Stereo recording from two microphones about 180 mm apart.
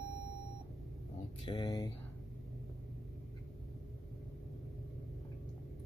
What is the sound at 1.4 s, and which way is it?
Speech, 25° left (ahead or behind).